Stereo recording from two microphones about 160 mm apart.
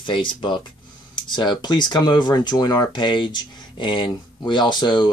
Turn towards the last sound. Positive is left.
turn(degrees=30)  # may be behind; listen again after turning